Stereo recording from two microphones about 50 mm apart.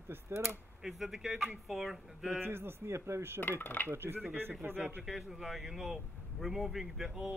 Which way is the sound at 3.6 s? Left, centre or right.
Left.